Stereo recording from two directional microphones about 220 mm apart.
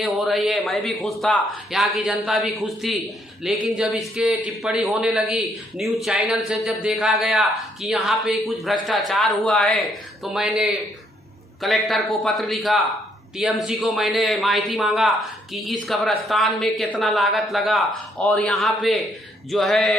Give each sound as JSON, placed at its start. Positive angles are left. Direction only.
{"t": 0.0, "sound": "speech", "side_deg": 0}